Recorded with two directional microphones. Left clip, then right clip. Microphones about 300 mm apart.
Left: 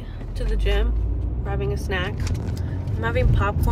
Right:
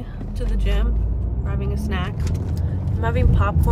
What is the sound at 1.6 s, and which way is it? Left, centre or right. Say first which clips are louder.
Speech: left 3 dB; centre.